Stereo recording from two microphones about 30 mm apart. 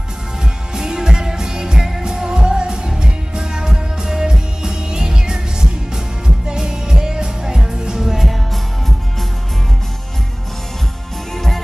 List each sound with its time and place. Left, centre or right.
0.7 s music: centre
11.3 s music: centre